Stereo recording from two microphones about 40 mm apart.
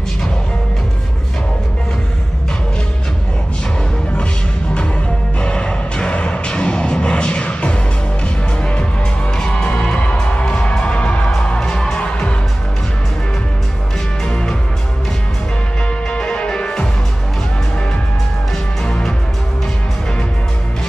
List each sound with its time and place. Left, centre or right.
5.4 s music: left
9.4 s music: centre
11.6 s music: centre
12.0 s music: left
14.2 s music: centre
16.1 s music: left